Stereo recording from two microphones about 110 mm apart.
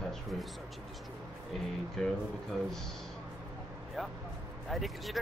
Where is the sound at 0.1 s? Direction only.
Centre (ahead or behind).